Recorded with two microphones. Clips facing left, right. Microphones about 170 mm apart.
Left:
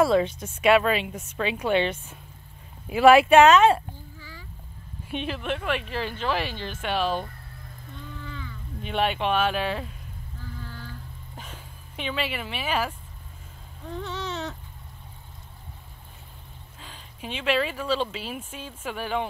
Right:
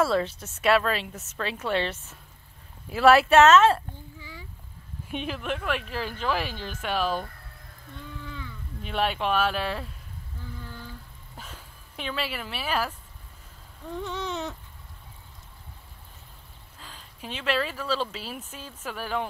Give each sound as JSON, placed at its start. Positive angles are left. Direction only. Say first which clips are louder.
{"t": 0.0, "sound": "speech", "louder": "left 4 dB", "side_deg": 10}
{"t": 4.2, "sound": "a sound", "louder": "right 1 dB", "side_deg": -20}
{"t": 5.1, "sound": "speech", "louder": "left 2 dB", "side_deg": -5}
{"t": 8.3, "sound": "speech", "louder": "left 1 dB", "side_deg": -5}
{"t": 11.4, "sound": "speech", "louder": "left 2 dB", "side_deg": 5}
{"t": 14.0, "sound": "a sound", "louder": "right 1 dB", "side_deg": -10}
{"t": 16.8, "sound": "speech", "louder": "left 2 dB", "side_deg": 10}